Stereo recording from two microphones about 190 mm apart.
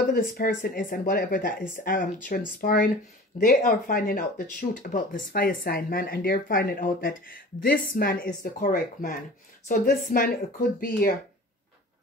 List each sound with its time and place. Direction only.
0.0 s speech: 50° left (ahead or behind)